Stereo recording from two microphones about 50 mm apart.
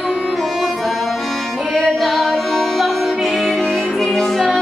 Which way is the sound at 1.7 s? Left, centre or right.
Centre.